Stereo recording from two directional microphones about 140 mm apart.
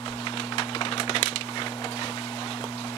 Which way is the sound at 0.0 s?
40° left (ahead or behind).